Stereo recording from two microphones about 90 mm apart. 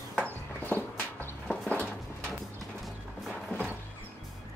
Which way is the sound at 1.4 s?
15° left (ahead or behind).